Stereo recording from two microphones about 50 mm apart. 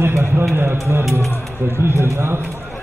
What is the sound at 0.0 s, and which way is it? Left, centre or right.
Speech, right.